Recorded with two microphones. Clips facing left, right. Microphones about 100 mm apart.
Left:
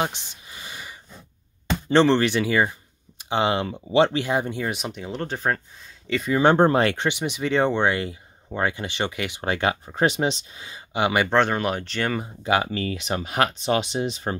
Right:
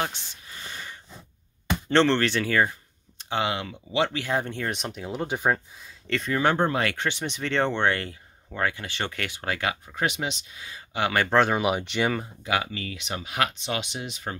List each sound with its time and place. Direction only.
0.0 s a sound: 20° left (ahead or behind)
1.9 s speech: 15° left (ahead or behind)
3.3 s speech: 30° left (ahead or behind)
4.3 s speech: 10° left (ahead or behind); by 5.6 s 10° right (ahead or behind)
6.0 s speech: 5° left (ahead or behind)
6.4 s speech: 35° left (ahead or behind)
7.1 s speech: 10° left (ahead or behind)
8.5 s speech: 20° left (ahead or behind)
11.2 s speech: 5° right (ahead or behind)
12.4 s speech: 35° left (ahead or behind)